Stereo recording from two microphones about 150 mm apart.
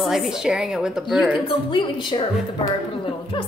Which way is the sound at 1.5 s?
35° left (ahead or behind).